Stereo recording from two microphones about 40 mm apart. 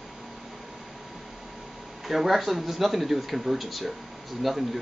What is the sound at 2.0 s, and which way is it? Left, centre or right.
Speech, centre.